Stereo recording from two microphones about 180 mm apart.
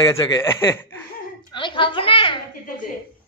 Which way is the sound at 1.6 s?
25° left (ahead or behind).